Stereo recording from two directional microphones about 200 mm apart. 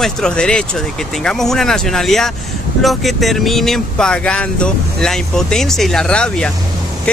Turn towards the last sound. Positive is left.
turn(degrees=5)  # may be behind; listen again after turning